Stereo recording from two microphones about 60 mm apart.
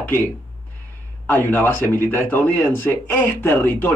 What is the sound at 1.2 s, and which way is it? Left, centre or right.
Speech, left.